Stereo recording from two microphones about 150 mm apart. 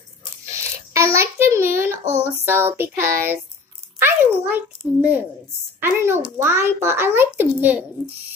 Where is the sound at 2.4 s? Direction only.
15° right (ahead or behind).